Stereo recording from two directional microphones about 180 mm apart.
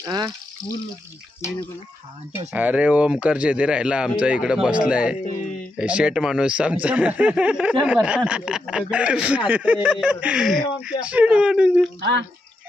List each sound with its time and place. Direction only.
0.0 s speech: 20° right (ahead or behind)
2.5 s speech: 10° right (ahead or behind)
12.0 s speech: 80° right